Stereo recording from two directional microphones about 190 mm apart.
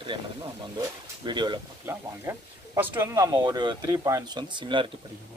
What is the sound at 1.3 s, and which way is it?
Speech, 25° right (ahead or behind).